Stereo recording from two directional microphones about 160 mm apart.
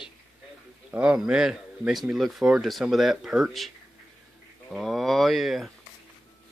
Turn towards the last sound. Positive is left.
turn(degrees=0)  # may be behind; listen again after turning